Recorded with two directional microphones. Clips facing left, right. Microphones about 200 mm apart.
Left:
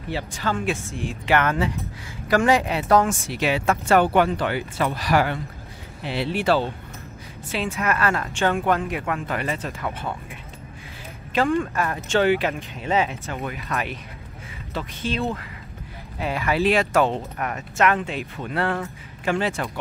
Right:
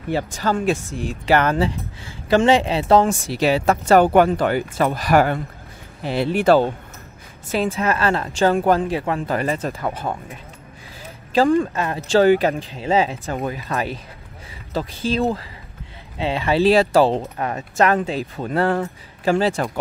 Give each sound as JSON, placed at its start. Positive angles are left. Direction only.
{"t": 0.1, "sound": "speech", "side_deg": -45}
{"t": 11.3, "sound": "speech", "side_deg": -30}